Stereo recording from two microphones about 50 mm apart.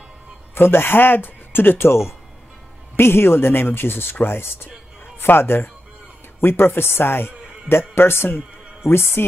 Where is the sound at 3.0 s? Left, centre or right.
Left.